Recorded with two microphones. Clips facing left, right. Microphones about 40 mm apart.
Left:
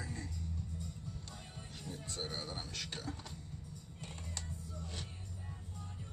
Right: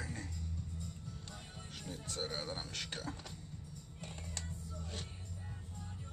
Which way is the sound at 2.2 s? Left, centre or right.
Right.